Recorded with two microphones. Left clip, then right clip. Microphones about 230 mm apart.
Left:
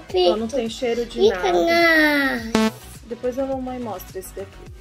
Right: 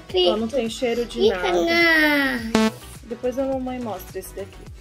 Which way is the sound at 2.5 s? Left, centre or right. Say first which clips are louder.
Even; centre.